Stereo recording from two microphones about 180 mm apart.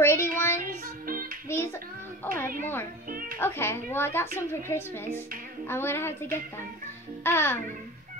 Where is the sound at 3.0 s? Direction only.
50° right (ahead or behind).